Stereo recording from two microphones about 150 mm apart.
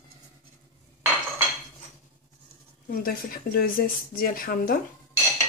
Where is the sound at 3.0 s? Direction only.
70° left (ahead or behind).